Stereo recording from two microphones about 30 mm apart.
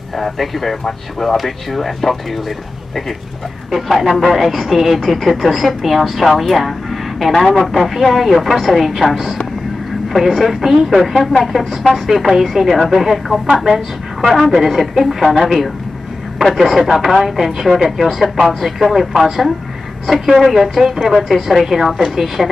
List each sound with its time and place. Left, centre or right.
0.1 s speech: centre
3.7 s speech: centre
4.2 s speech: centre
21.9 s speech: centre